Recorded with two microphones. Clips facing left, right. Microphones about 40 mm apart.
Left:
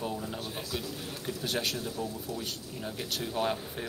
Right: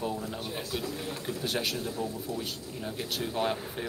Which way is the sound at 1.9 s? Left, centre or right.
Right.